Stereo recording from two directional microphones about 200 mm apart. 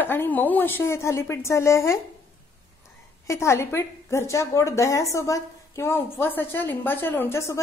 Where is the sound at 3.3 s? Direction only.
15° left (ahead or behind).